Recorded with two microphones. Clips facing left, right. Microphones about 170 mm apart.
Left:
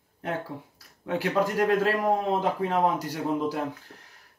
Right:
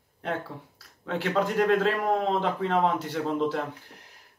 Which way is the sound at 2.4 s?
70° right (ahead or behind).